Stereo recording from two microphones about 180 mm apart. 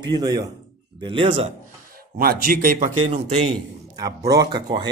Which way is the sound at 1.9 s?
55° right (ahead or behind).